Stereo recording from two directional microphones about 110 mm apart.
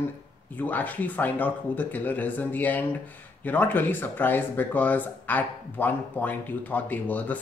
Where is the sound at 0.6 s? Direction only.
15° left (ahead or behind).